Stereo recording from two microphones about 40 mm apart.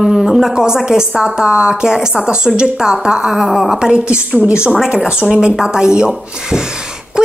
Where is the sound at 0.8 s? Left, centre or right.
Centre.